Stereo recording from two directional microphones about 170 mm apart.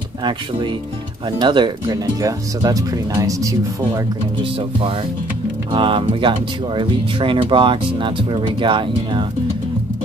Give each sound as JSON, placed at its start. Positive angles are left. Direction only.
{"t": 0.2, "sound": "speech", "side_deg": -30}
{"t": 4.6, "sound": "speech", "side_deg": -30}